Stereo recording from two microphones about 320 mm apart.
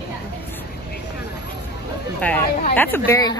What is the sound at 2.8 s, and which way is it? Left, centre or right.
Speech, centre.